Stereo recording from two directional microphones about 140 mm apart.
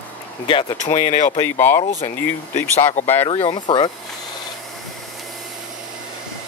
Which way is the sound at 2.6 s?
60° left (ahead or behind).